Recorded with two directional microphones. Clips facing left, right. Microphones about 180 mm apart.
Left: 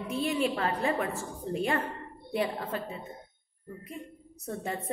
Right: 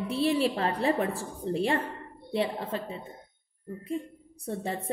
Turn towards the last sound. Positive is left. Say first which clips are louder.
# right 2 dB
turn(degrees=-30)  # may be behind; listen again after turning